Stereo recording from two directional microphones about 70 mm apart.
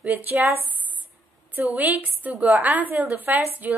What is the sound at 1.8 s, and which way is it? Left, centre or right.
A woman's voice, right.